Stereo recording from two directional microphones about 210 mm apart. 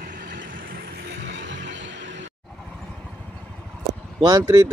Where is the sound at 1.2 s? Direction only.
60° right (ahead or behind).